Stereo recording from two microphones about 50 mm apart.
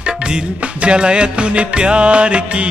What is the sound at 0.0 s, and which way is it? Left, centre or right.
Music, centre.